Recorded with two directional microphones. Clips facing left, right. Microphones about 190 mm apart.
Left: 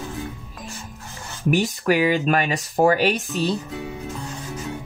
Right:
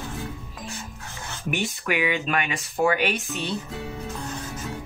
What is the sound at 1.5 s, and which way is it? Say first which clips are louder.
Speech: left 7 dB; 40° left (ahead or behind).